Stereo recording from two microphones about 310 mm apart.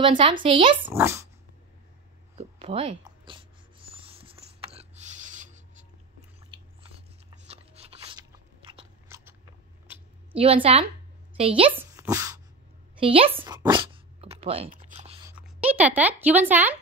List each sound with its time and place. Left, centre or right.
0.0 s speech: centre
2.3 s writing: centre
7.2 s biting: centre
9.9 s a sound: centre
10.3 s speech: centre
11.7 s a sound: centre
13.0 s speech: centre
13.4 s dog: centre
15.3 s speech: centre